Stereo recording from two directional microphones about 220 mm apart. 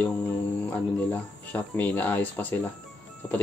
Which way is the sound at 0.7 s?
5° left (ahead or behind).